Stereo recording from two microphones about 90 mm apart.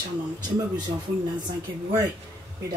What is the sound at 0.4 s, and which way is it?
Speech, 50° right (ahead or behind).